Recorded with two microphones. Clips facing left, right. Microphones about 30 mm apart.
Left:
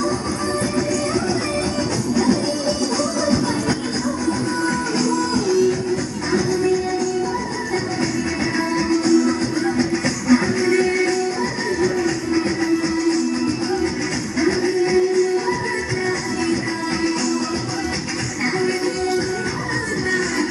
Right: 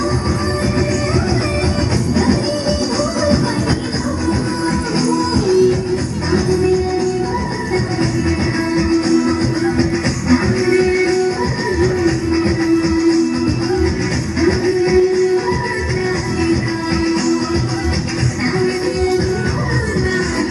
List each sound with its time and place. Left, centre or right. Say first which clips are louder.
5.1 s music: right 6 dB; right
10.3 s music: right 3 dB; centre
14.4 s music: right 4 dB; centre
17.0 s music: right 5 dB; centre
18.6 s music: right 5 dB; centre